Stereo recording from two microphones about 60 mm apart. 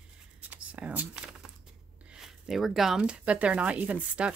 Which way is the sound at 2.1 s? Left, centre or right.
Centre.